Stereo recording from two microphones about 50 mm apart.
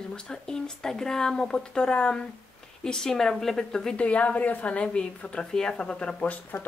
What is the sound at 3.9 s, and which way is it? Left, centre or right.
Speech, left.